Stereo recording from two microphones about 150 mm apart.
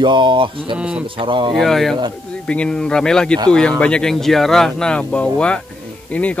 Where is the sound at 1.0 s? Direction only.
35° right (ahead or behind).